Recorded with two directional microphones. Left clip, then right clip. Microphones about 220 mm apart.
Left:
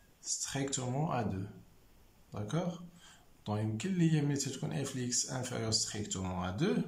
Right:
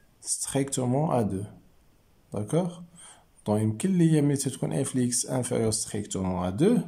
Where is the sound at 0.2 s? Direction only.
30° right (ahead or behind).